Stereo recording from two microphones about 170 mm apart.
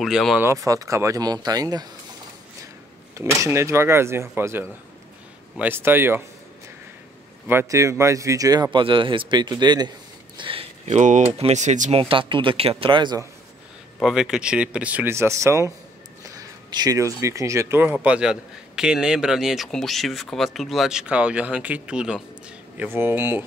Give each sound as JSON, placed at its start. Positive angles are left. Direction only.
{"t": 0.0, "sound": "speech", "side_deg": 0}
{"t": 0.4, "sound": "speech", "side_deg": -15}
{"t": 3.2, "sound": "speech", "side_deg": -15}
{"t": 7.4, "sound": "a man's voice", "side_deg": -15}
{"t": 12.0, "sound": "speech", "side_deg": -30}
{"t": 13.9, "sound": "speech", "side_deg": 0}